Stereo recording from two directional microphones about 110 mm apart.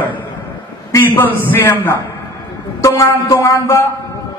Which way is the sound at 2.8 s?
30° left (ahead or behind).